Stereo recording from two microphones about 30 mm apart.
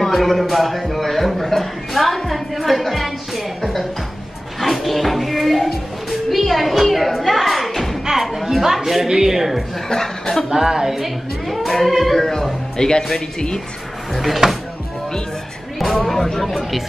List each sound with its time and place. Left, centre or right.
0.0 s a man's voice: centre
4.8 s a man's voice: centre
8.0 s speech: centre
9.8 s speech: centre
10.5 s speech: centre
11.0 s a man's voice: centre
12.7 s speech: centre
14.4 s speech: right
15.8 s a man's voice: centre